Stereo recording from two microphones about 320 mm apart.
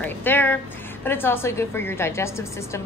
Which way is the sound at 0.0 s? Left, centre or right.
Centre.